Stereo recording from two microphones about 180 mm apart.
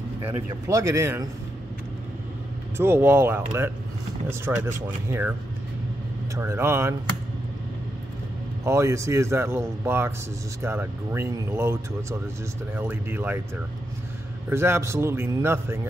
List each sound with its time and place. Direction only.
0.7 s speech: 15° right (ahead or behind)
2.8 s speech: 10° right (ahead or behind)
6.3 s speech: 15° right (ahead or behind)
8.6 s speech: 15° right (ahead or behind)
14.5 s speech: 15° right (ahead or behind)